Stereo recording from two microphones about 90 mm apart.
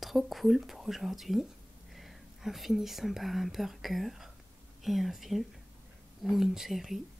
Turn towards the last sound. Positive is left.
turn(degrees=0)  # may be behind; listen again after turning